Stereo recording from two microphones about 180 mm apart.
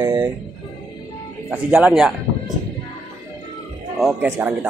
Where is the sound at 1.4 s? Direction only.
5° right (ahead or behind).